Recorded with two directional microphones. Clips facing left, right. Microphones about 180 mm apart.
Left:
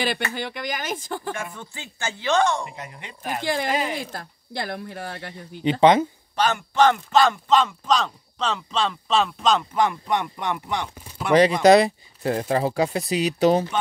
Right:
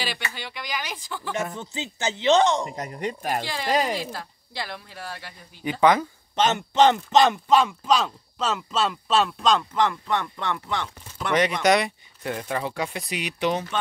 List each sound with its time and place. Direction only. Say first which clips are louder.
0.0 s speech: left 6 dB; 55° left (ahead or behind)
1.5 s speech: right 6 dB; 20° right (ahead or behind)
2.6 s speech: right 7 dB; 40° right (ahead or behind)
4.1 s speech: left 2 dB; 50° left (ahead or behind)
5.6 s speech: left 3 dB; 25° left (ahead or behind)
6.3 s speech: right 1 dB; 20° right (ahead or behind); by 11.3 s 10° left (ahead or behind)
11.3 s speech: left 6 dB; 30° left (ahead or behind)